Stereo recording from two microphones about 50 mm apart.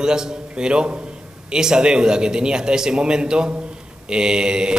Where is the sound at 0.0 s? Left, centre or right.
Centre.